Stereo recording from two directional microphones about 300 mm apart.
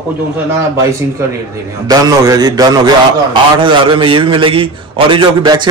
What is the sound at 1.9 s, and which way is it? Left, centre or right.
A man's voice, centre.